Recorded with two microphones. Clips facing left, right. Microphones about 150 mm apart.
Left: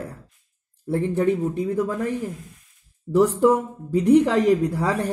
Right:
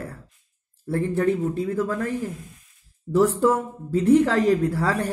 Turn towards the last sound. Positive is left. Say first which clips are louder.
# left 1 dB
turn(degrees=20)  # may be behind; listen again after turning